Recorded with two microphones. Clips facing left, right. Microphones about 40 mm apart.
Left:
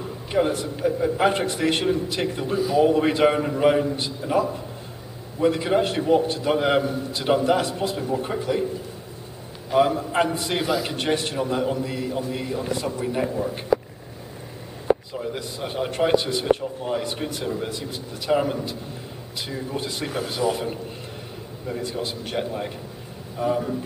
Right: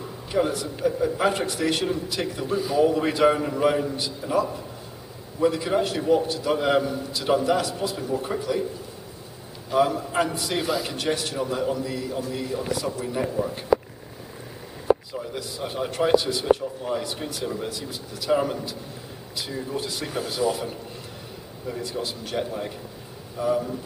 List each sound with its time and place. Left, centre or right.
0.3 s a man's voice: left
9.7 s a man's voice: centre
11.3 s a man's voice: centre
15.1 s a man's voice: left